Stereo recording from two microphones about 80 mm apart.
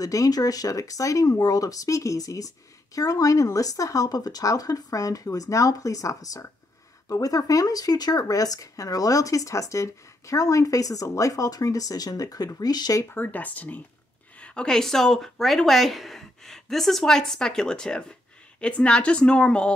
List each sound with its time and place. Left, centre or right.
0.0 s speech: left
13.1 s a woman's voice: left